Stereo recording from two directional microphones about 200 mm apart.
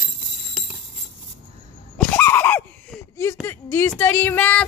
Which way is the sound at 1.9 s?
10° left (ahead or behind).